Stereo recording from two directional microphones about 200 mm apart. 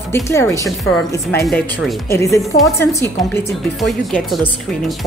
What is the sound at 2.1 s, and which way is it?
A woman's voice, 15° left (ahead or behind).